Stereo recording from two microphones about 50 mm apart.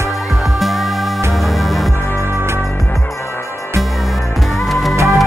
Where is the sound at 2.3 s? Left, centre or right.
Right.